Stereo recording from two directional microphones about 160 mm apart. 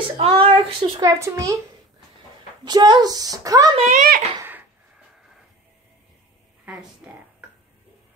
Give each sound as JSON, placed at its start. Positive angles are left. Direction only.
{"t": 0.2, "sound": "speech", "side_deg": -35}
{"t": 1.0, "sound": "a woman's voice", "side_deg": -20}
{"t": 2.6, "sound": "a woman's voice", "side_deg": -25}
{"t": 3.7, "sound": "speech", "side_deg": -50}
{"t": 4.4, "sound": "a sound", "side_deg": -10}
{"t": 6.6, "sound": "speech", "side_deg": -10}